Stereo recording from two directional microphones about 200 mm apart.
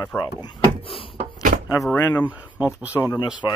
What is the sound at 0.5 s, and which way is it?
Speech, 25° left (ahead or behind).